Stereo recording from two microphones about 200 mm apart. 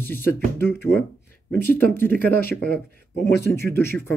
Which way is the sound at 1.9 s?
10° left (ahead or behind).